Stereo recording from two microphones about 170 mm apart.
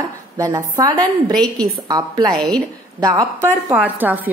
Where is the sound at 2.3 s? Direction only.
5° left (ahead or behind).